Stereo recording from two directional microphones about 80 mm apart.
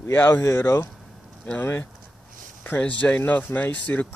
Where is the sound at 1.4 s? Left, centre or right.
Left.